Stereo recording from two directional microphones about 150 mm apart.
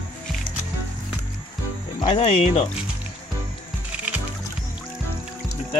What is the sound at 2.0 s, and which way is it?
Speech, 40° left (ahead or behind).